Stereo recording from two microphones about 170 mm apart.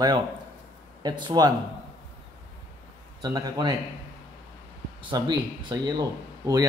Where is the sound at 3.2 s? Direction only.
20° right (ahead or behind).